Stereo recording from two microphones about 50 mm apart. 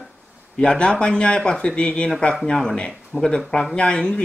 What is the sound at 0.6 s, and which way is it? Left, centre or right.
Speech, centre.